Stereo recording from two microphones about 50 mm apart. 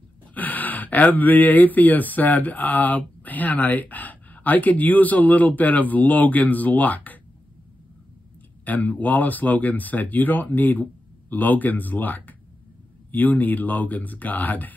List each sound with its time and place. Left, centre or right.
0.3 s speech: left
8.6 s speech: left